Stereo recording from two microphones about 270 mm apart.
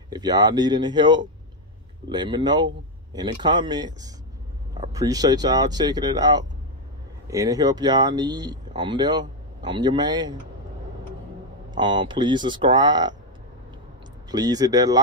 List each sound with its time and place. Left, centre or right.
0.1 s speech: centre
11.7 s speech: centre
14.3 s speech: centre